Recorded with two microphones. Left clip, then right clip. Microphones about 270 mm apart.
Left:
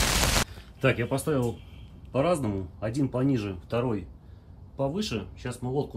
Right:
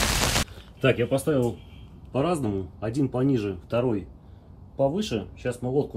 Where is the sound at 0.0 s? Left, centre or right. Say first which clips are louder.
Right 1 dB; centre.